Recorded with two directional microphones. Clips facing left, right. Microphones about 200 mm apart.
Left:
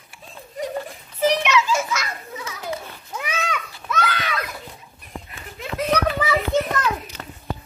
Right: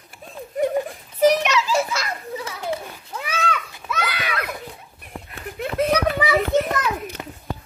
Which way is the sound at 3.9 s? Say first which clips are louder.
Left 2 dB; 10° right (ahead or behind).